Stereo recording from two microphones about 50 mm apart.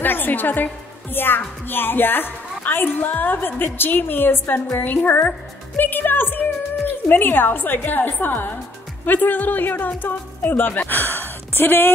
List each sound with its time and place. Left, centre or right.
0.0 s music: left
1.1 s a woman's voice: left